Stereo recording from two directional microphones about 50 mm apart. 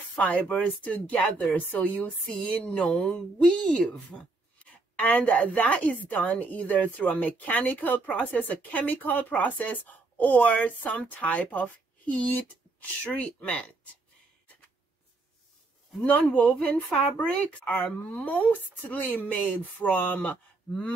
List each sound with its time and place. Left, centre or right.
0.2 s speech: left; by 4.3 s centre
4.9 s a woman's voice: left
16.1 s a woman's voice: left